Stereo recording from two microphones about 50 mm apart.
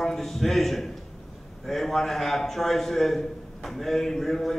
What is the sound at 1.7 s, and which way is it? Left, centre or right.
A man's voice, centre.